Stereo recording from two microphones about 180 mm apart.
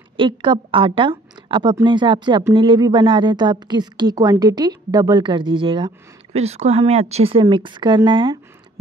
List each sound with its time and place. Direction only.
0.2 s a woman's voice: 30° right (ahead or behind)